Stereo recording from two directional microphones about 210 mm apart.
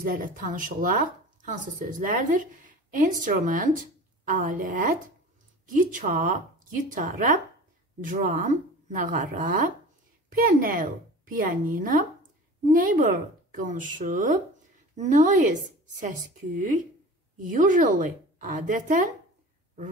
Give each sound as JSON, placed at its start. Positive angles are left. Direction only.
{"t": 0.0, "sound": "speech", "side_deg": -40}
{"t": 16.5, "sound": "speech", "side_deg": -40}